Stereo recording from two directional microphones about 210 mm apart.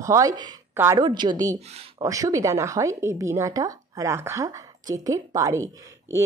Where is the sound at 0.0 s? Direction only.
15° right (ahead or behind).